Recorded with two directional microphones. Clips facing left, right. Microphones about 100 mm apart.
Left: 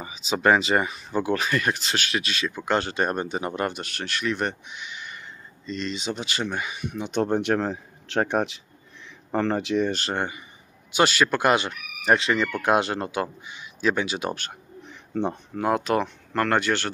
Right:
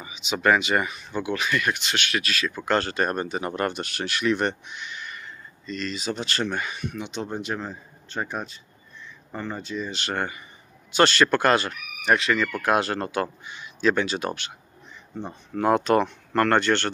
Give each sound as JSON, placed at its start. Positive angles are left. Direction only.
{"t": 0.0, "sound": "speech", "side_deg": 35}
{"t": 3.8, "sound": "speech", "side_deg": -5}
{"t": 6.1, "sound": "speech", "side_deg": 10}
{"t": 7.1, "sound": "speech", "side_deg": 60}
{"t": 9.3, "sound": "speech", "side_deg": 80}
{"t": 10.0, "sound": "speech", "side_deg": 20}
{"t": 10.9, "sound": "speech", "side_deg": 10}
{"t": 12.0, "sound": "speech", "side_deg": 30}
{"t": 15.5, "sound": "speech", "side_deg": 5}